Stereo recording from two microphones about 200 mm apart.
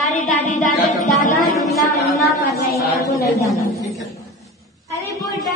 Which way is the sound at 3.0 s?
15° left (ahead or behind).